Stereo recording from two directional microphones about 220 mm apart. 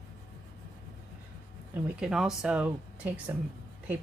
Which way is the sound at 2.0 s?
5° right (ahead or behind).